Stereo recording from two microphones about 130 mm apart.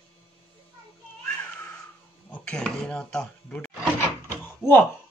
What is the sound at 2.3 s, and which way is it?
Speech, 5° left (ahead or behind).